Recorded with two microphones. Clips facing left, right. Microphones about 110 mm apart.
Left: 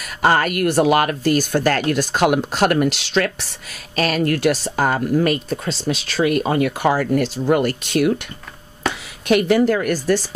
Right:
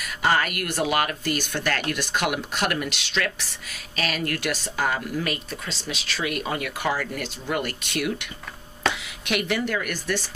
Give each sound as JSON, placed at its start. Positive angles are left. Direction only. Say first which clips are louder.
{"t": 0.0, "sound": "speech", "louder": "left 6 dB", "side_deg": 40}
{"t": 9.3, "sound": "speech", "louder": "left 10 dB", "side_deg": 35}